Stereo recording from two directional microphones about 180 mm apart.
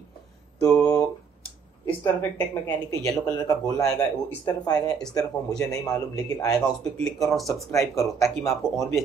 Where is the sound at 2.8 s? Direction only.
20° left (ahead or behind).